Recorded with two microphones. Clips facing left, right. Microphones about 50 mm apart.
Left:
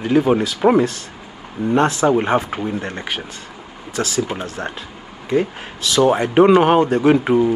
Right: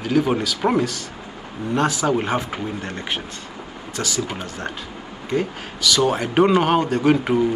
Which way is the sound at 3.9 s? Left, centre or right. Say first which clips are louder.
Left 5 dB; left.